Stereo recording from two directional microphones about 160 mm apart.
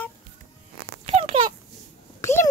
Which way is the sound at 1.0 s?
35° right (ahead or behind).